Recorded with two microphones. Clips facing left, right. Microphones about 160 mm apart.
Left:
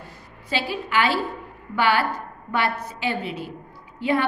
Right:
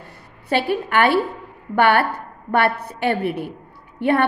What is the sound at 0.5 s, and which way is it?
A woman's voice, 55° right (ahead or behind).